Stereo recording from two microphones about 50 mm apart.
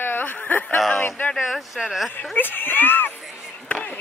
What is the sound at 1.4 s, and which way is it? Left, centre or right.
Speech, centre.